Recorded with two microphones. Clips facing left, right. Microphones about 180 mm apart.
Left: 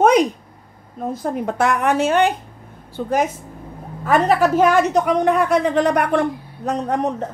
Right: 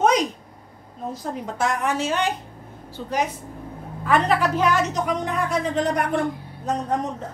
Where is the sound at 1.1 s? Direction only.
55° left (ahead or behind).